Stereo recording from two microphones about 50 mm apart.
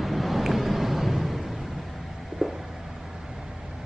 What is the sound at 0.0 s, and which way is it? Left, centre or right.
Vehicle, centre.